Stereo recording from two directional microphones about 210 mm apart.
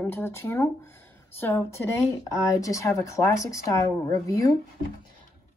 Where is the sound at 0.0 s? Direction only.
10° left (ahead or behind).